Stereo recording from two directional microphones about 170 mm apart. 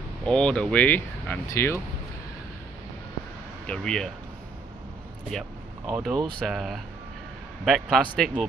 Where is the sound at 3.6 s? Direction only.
5° left (ahead or behind).